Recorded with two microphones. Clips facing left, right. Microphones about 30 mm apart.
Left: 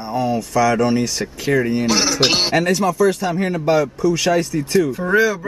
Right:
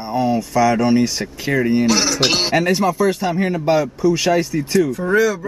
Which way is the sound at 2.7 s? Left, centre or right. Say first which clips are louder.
Even; centre.